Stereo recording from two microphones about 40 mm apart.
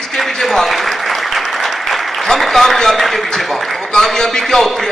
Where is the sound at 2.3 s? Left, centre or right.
Centre.